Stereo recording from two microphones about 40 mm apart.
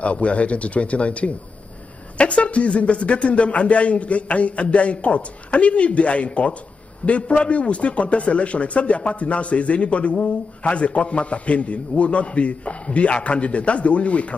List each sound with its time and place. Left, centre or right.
0.0 s a man's voice: left